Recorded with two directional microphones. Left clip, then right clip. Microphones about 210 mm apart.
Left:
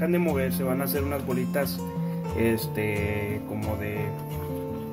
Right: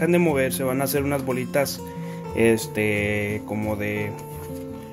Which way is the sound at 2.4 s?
40° right (ahead or behind).